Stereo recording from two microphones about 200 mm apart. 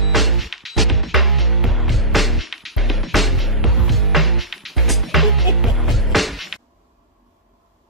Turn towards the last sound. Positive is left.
turn(degrees=0)  # may be behind; listen again after turning